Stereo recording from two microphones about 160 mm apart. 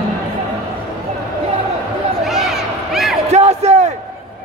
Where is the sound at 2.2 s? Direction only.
Centre (ahead or behind).